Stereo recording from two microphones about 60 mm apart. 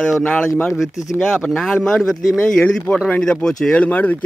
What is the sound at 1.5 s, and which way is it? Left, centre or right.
Speech, centre.